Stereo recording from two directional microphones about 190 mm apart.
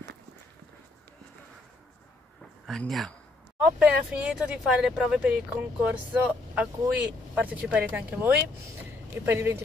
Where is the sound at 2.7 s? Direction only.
Centre (ahead or behind).